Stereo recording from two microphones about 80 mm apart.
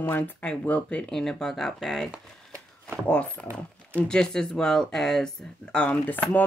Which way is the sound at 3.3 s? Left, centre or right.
Right.